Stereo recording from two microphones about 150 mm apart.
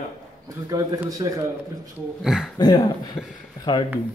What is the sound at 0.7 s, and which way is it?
Speech, 25° right (ahead or behind).